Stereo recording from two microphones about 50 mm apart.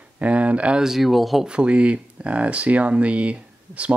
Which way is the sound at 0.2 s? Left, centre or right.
Right.